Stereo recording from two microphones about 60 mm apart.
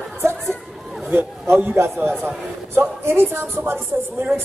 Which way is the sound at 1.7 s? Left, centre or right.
Right.